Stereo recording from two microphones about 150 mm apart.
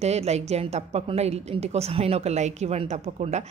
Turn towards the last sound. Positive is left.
turn(degrees=-45)  # may be behind; listen again after turning